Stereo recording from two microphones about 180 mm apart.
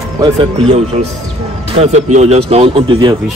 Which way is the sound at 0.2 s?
25° right (ahead or behind).